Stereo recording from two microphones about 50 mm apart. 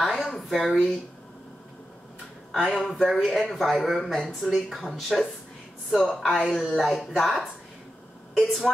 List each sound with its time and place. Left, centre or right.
0.0 s a sound: centre
0.4 s speech: centre
2.5 s speech: centre
4.4 s speech: centre
4.6 s speech: centre